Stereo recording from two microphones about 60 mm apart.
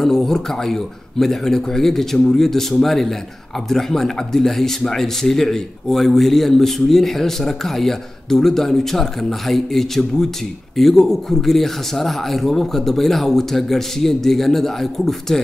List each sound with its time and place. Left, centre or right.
0.0 s speech: centre